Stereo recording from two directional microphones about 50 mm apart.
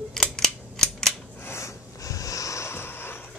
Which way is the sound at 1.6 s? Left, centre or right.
Left.